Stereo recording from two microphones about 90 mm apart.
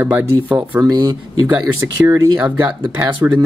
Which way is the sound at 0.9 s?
50° right (ahead or behind).